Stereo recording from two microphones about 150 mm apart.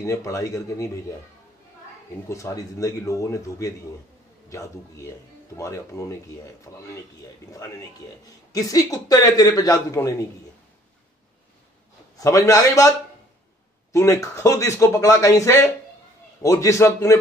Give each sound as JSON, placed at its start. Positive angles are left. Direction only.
{"t": 0.0, "sound": "speech", "side_deg": 20}
{"t": 2.2, "sound": "speech", "side_deg": 20}
{"t": 12.2, "sound": "speech", "side_deg": 20}
{"t": 13.9, "sound": "speech", "side_deg": 20}